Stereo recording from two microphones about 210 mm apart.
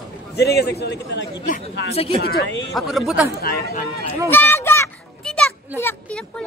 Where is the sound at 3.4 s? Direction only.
50° left (ahead or behind).